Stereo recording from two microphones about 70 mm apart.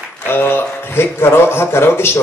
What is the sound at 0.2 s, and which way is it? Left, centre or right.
A man's voice, left.